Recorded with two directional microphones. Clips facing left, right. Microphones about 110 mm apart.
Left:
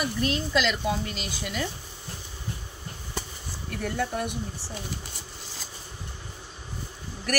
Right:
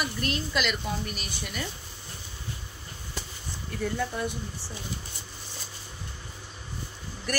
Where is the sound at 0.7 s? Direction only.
90° left.